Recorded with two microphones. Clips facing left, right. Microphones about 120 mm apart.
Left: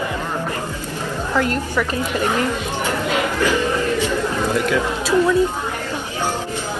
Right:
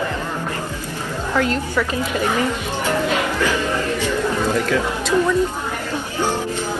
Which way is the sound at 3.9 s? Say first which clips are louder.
Even; 15° left (ahead or behind).